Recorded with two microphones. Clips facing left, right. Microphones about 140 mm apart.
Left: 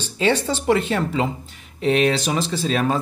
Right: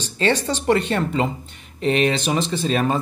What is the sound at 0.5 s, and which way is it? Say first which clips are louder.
Speech: even; 5° left (ahead or behind).